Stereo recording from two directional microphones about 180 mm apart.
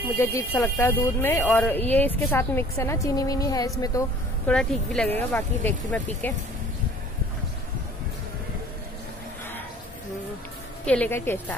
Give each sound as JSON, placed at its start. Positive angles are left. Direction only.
{"t": 0.2, "sound": "speech", "side_deg": 15}
{"t": 4.5, "sound": "speech", "side_deg": 5}
{"t": 10.9, "sound": "speech", "side_deg": 10}